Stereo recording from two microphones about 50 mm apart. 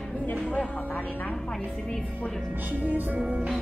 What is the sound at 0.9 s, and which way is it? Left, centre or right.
Speech, left.